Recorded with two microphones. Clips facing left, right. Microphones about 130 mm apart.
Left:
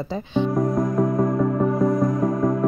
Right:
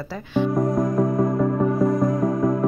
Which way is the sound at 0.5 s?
Centre (ahead or behind).